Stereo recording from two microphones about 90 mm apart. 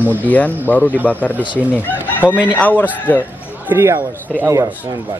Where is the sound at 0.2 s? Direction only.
20° left (ahead or behind).